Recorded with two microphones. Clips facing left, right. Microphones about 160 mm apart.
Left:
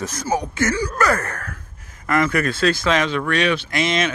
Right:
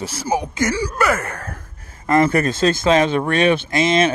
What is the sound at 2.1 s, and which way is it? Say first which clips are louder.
Speech: right 4 dB; 30° right (ahead or behind).